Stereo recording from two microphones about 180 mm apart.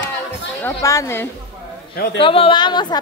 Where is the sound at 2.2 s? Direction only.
30° left (ahead or behind).